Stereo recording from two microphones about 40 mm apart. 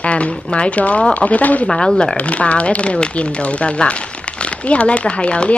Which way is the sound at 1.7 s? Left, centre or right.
Left.